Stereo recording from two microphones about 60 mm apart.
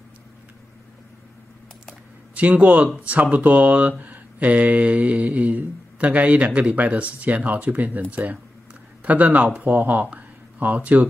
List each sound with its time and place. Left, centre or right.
2.3 s speech: right